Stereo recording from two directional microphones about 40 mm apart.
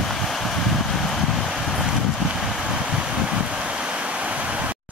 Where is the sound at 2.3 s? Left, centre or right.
Centre; by 4.7 s right.